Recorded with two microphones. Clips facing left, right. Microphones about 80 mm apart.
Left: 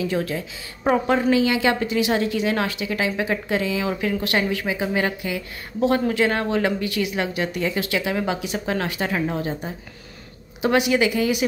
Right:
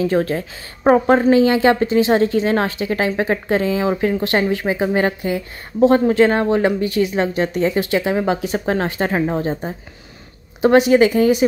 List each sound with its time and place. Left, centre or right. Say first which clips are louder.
0.0 s a woman's voice: right 6 dB; right